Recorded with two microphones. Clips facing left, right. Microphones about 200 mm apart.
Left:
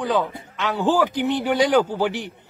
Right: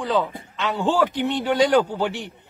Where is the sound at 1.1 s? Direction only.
20° right (ahead or behind).